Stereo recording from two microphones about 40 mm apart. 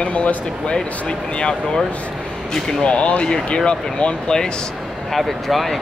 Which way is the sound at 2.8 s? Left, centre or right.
Left.